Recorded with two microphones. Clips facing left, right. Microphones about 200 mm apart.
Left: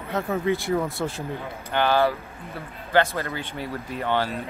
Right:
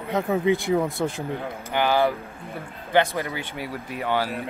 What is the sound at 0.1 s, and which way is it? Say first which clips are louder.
Speech: right 3 dB; 15° right (ahead or behind).